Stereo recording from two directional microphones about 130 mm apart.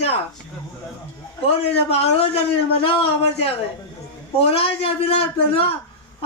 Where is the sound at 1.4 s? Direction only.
50° left (ahead or behind).